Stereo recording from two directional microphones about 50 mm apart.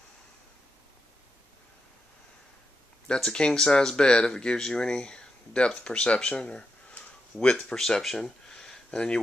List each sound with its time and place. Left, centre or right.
3.2 s speech: centre
7.7 s speech: centre
8.5 s a sound: centre